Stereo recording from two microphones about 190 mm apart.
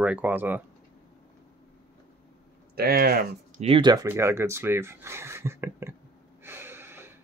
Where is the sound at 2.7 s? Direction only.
50° right (ahead or behind).